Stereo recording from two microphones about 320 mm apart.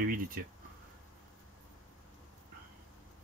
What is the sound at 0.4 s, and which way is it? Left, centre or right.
Speech, right.